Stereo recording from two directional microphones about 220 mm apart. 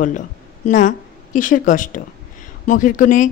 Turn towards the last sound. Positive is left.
turn(degrees=35)  # may be behind; listen again after turning